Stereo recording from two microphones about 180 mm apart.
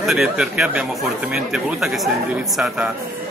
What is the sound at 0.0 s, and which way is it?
A man's voice, centre (ahead or behind).